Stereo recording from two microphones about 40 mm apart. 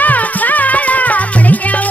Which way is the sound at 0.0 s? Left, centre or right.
Left.